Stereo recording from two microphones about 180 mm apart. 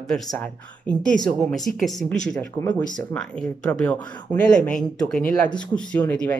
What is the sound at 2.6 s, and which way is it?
Speech, 15° left (ahead or behind).